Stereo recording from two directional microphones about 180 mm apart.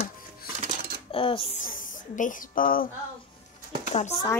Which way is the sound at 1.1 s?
30° left (ahead or behind).